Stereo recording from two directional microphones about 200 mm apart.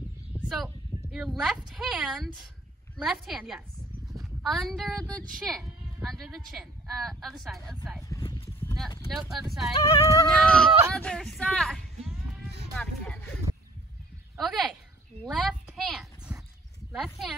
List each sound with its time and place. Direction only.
1.1 s a woman's voice: centre (ahead or behind)
8.1 s clip-clop: 20° left (ahead or behind)
9.1 s a woman's voice: centre (ahead or behind)
9.8 s speech: 15° left (ahead or behind)
10.2 s a woman's voice: 5° left (ahead or behind)
14.4 s a woman's voice: centre (ahead or behind)
15.2 s a sound: centre (ahead or behind)
16.9 s a woman's voice: centre (ahead or behind)